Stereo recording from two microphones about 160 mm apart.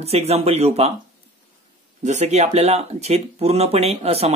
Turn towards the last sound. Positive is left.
turn(degrees=-40)  # may be behind; listen again after turning